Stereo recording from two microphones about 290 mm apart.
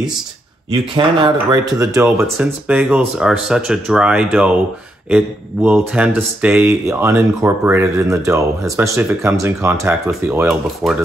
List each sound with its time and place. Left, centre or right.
0.9 s speech: centre